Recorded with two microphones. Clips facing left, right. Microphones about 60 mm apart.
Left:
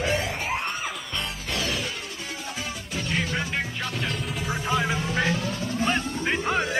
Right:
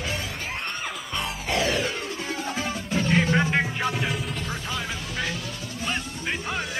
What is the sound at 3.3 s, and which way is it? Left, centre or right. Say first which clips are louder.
Music: right 6 dB; centre.